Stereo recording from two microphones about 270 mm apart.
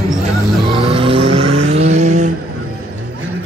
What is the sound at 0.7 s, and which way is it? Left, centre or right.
Vehicle, centre.